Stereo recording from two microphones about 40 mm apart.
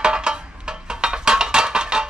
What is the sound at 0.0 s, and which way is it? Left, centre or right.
Music, right.